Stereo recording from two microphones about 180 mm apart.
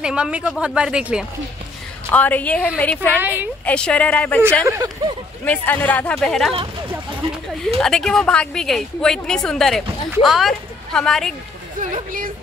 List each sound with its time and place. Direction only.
0.0 s a woman's voice: 5° right (ahead or behind)
2.0 s speech: 10° left (ahead or behind)
4.6 s speech: 15° right (ahead or behind)
5.4 s speech: 10° left (ahead or behind)
7.6 s a woman's voice: centre (ahead or behind)
11.8 s speech: 45° right (ahead or behind)